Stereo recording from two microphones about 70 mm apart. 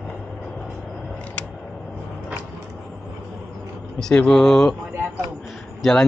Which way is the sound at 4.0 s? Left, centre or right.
Centre.